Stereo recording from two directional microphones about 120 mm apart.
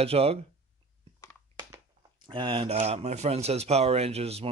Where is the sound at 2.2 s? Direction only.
45° right (ahead or behind).